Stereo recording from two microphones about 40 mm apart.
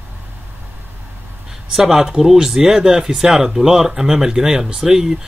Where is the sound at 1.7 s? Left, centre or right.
Centre.